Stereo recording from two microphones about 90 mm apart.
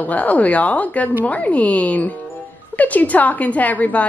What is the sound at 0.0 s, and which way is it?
A woman's voice, 15° left (ahead or behind).